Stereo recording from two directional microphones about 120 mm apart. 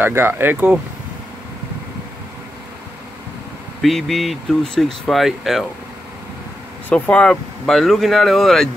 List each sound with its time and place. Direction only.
0.0 s speech: 20° right (ahead or behind)
3.8 s speech: centre (ahead or behind)
6.9 s speech: 10° left (ahead or behind)